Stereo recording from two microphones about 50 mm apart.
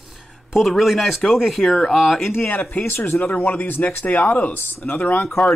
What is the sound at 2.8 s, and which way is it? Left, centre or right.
Speech, left.